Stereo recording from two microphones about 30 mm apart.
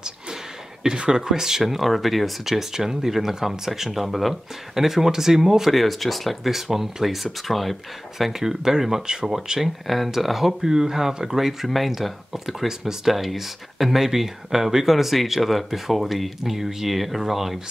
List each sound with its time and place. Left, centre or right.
1.1 s speech: right; by 2.3 s centre
2.7 s speech: centre
4.0 s speech: centre
4.7 s speech: centre
5.7 s speech: centre
6.5 s speech: centre
7.4 s speech: centre
8.3 s speech: centre
9.0 s speech: right
9.3 s speech: centre
9.8 s speech: centre
10.6 s speech: centre
11.3 s speech: centre